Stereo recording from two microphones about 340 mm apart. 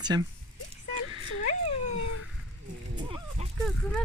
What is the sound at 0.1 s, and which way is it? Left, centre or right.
Speech, centre.